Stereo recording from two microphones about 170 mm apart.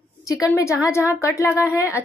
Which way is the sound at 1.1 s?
20° left (ahead or behind).